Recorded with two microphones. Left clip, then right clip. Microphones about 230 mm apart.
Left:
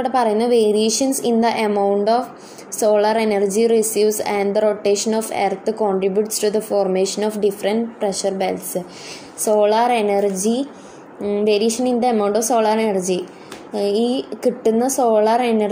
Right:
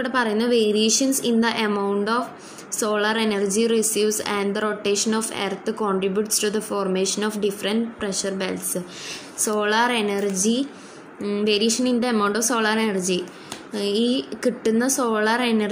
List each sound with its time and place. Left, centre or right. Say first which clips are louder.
0.0 s a woman's voice: left 5 dB; centre